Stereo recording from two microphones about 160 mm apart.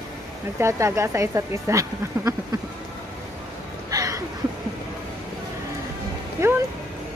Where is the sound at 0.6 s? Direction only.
20° right (ahead or behind).